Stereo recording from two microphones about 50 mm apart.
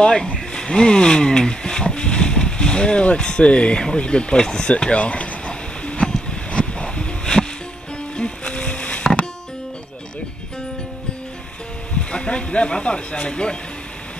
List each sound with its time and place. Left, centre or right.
0.0 s speech: centre
6.5 s a sound: centre
8.2 s music: centre
11.9 s speech: left